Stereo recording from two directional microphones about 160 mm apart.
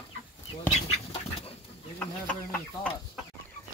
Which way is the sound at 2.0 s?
10° left (ahead or behind).